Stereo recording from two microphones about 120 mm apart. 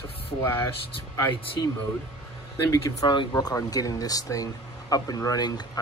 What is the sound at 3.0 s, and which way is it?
Speech, 40° left (ahead or behind).